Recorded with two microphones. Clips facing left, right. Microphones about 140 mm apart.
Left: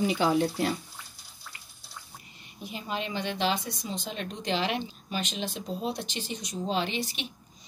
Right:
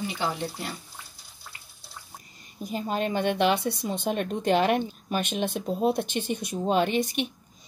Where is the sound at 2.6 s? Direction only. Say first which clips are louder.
Right 6 dB; 45° right (ahead or behind).